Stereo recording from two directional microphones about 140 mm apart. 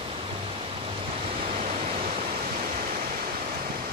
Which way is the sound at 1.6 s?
65° right (ahead or behind).